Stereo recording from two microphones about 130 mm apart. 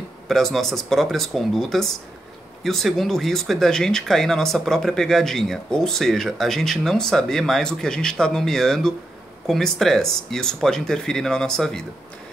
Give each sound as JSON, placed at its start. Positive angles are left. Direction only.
{"t": 0.3, "sound": "speech", "side_deg": 0}